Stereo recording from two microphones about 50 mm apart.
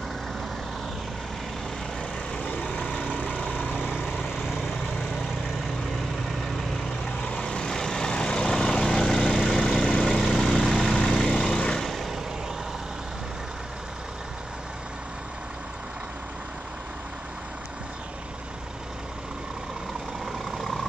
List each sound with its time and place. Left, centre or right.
2.7 s vehicle: left
3.9 s vehicle: centre
7.2 s vehicle: left
11.8 s vehicle: centre
20.5 s vehicle: centre